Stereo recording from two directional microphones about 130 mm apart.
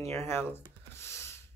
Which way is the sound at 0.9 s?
20° left (ahead or behind).